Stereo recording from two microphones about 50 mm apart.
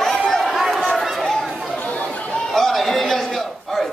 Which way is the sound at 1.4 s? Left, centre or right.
Centre.